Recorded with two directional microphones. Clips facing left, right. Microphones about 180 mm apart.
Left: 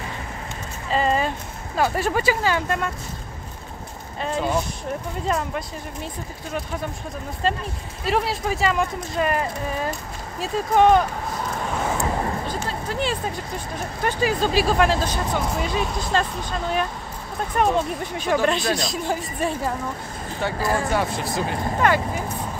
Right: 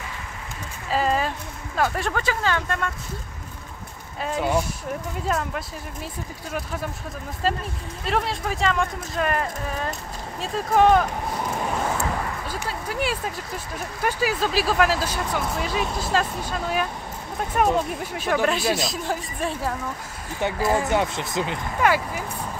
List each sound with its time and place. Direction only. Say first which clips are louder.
0.8 s a sound: left 1 dB; 5° right (ahead or behind)
1.8 s speech: left 3 dB; 5° left (ahead or behind)
4.2 s speech: even; 5° right (ahead or behind)
7.4 s speech: even; 5° right (ahead or behind)
12.4 s speech: left 2 dB; 10° right (ahead or behind)
20.3 s speech: right 1 dB; 20° right (ahead or behind)
21.8 s speech: even; 5° right (ahead or behind)